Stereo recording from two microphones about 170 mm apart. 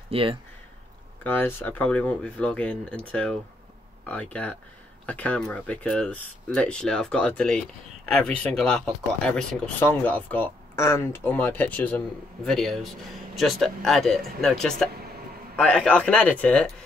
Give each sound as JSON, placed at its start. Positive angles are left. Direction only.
{"t": 0.1, "sound": "speech", "side_deg": -35}
{"t": 1.2, "sound": "speech", "side_deg": 10}